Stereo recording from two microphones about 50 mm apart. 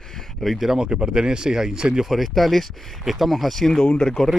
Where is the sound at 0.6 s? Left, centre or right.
Centre.